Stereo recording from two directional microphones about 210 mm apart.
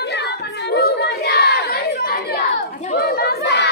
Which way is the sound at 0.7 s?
50° left (ahead or behind).